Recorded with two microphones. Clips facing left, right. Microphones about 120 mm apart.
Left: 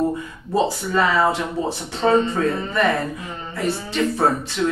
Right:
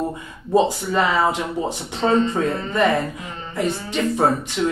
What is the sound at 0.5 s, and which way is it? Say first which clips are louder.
Speech: right 3 dB; 15° right (ahead or behind).